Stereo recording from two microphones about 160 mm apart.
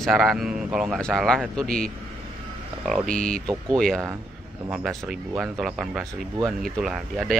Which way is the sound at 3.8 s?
Centre (ahead or behind).